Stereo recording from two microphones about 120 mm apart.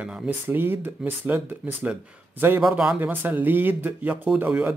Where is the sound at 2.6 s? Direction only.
5° right (ahead or behind).